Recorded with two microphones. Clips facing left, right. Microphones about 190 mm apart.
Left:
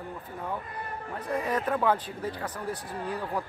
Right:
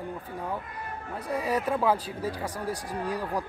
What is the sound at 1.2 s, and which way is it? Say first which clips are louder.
Speech: right 1 dB; 10° right (ahead or behind).